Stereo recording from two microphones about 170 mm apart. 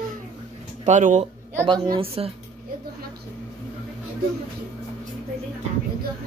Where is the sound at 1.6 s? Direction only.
30° right (ahead or behind).